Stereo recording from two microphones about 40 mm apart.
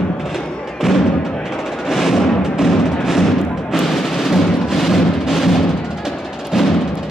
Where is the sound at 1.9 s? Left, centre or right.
Centre.